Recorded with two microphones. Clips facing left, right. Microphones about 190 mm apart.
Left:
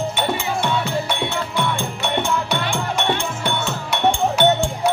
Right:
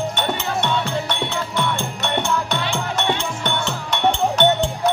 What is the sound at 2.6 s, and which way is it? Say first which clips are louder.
Music: left 1 dB; 50° left (ahead or behind).